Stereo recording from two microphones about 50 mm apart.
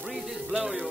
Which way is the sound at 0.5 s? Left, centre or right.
Right.